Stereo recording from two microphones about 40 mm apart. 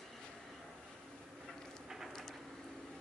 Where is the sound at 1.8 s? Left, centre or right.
Centre.